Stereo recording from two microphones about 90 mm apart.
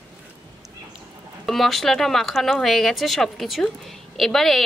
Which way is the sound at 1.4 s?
Centre (ahead or behind).